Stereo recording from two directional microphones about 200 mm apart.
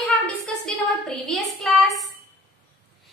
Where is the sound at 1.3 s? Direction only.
Centre (ahead or behind).